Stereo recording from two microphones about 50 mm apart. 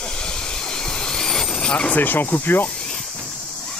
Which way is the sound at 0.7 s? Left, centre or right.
Centre.